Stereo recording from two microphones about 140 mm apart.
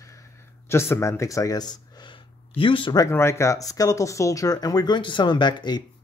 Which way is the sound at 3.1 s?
20° left (ahead or behind).